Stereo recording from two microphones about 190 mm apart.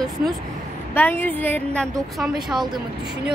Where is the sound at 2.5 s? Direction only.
25° right (ahead or behind).